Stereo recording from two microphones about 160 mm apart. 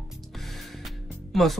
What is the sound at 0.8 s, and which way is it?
Music, centre (ahead or behind).